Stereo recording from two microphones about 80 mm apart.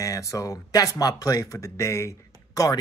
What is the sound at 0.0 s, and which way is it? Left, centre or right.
Speech, left.